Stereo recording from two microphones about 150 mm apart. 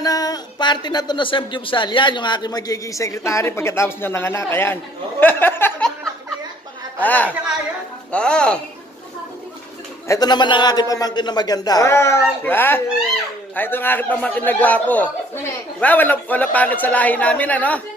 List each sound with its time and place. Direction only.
0.0 s speech: 25° left (ahead or behind)
7.0 s a man's voice: 10° left (ahead or behind)
10.0 s a man's voice: 25° left (ahead or behind); by 17.8 s 10° left (ahead or behind)